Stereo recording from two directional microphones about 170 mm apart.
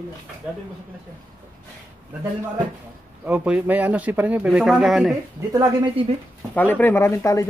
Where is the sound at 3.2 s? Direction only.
5° right (ahead or behind).